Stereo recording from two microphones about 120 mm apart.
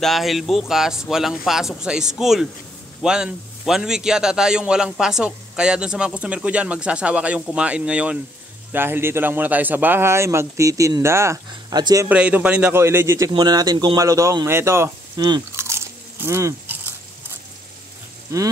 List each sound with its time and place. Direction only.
0.0 s a man's voice: centre (ahead or behind); by 12.1 s 30° right (ahead or behind)
12.1 s a man's voice: 10° right (ahead or behind)
12.7 s a man's voice: 20° right (ahead or behind)
13.3 s a man's voice: 35° right (ahead or behind)
15.1 s speech: 35° right (ahead or behind)
15.5 s crunch: 20° right (ahead or behind)